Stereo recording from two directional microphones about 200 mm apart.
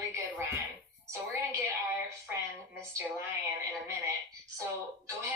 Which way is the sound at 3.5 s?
15° right (ahead or behind).